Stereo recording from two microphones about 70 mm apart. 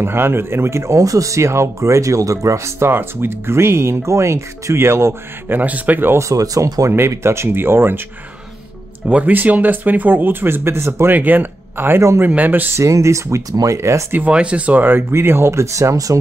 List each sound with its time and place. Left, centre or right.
0.0 s speech: right
5.6 s speech: right
6.1 s speech: right
7.1 s speech: right
9.0 s speech: right
11.1 s speech: right
12.7 s speech: right
13.5 s speech: right
13.7 s speech: right
14.1 s speech: centre; by 16.2 s right